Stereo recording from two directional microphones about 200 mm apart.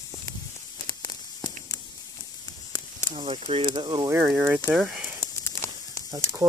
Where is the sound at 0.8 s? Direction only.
20° left (ahead or behind).